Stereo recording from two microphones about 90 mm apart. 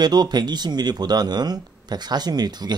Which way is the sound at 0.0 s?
50° right (ahead or behind).